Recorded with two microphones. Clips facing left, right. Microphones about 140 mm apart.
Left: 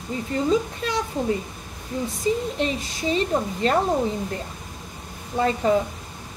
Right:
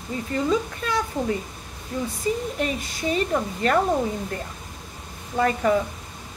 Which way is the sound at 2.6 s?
25° left (ahead or behind).